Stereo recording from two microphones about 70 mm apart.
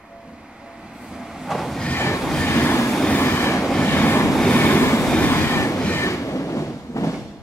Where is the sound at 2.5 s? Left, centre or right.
Left.